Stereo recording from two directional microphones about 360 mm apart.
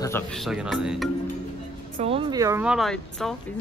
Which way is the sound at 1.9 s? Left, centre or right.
Centre.